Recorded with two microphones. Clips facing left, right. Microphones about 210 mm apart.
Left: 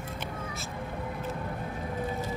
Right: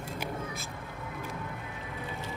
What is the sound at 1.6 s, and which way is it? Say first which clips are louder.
Music: left 7 dB; 45° left (ahead or behind).